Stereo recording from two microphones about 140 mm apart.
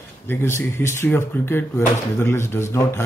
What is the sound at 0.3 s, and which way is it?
Speech, 20° left (ahead or behind).